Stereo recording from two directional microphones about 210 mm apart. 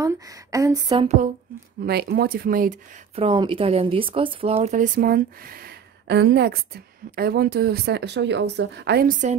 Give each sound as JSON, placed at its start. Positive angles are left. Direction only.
{"t": 0.0, "sound": "speech", "side_deg": -15}
{"t": 1.9, "sound": "speech", "side_deg": -50}
{"t": 3.2, "sound": "speech", "side_deg": -25}